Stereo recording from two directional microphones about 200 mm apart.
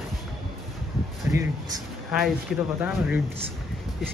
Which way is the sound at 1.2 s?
15° right (ahead or behind).